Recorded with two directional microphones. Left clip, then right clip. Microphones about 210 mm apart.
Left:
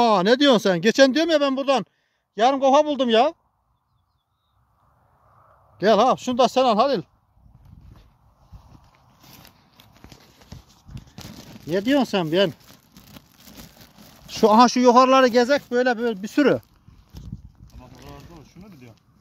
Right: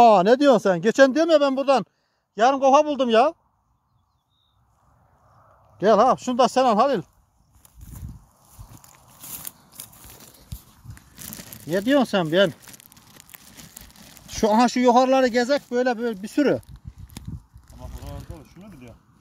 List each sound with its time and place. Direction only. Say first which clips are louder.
0.0 s a man's voice: right 3 dB; centre (ahead or behind)
0.6 s speech: even; 25° left (ahead or behind)
1.3 s a man's voice: right 2 dB; centre (ahead or behind)
5.4 s speech: even; 5° left (ahead or behind)
8.9 s a sound: right 7 dB; 45° right (ahead or behind)
11.7 s speech: right 1 dB; 5° right (ahead or behind)
14.2 s speech: left 4 dB; 10° left (ahead or behind)